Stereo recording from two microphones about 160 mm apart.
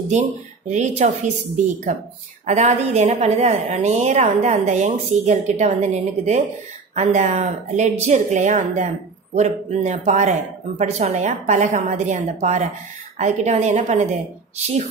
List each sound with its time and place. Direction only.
0.7 s a woman's voice: 50° right (ahead or behind)